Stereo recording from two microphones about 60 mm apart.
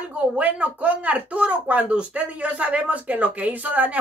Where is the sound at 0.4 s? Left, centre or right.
Right.